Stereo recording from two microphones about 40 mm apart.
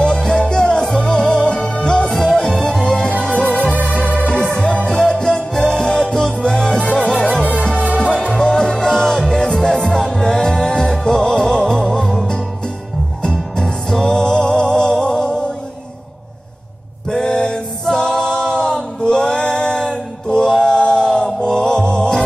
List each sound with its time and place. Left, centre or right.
0.0 s music: centre
2.0 s music: centre
3.7 s music: right
4.3 s music: left
7.7 s music: right
8.0 s music: left
17.1 s a capella: centre
21.5 s mantra: centre